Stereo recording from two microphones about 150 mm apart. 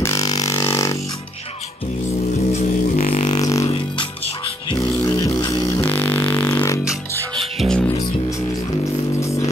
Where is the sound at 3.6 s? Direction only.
35° left (ahead or behind).